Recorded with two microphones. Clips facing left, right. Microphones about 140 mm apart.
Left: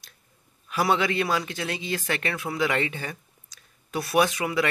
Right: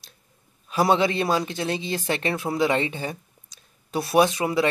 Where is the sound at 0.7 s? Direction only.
25° right (ahead or behind).